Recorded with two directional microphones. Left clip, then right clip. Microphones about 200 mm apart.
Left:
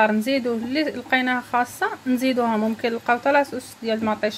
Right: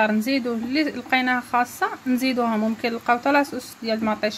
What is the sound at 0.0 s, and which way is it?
Speech, centre (ahead or behind).